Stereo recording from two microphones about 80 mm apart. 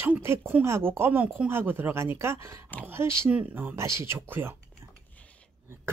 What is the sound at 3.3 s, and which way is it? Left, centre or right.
Speech, right.